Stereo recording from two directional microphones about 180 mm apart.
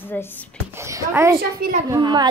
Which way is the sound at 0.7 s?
15° right (ahead or behind).